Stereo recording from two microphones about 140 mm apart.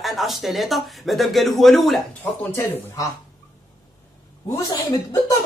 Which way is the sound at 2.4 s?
15° left (ahead or behind).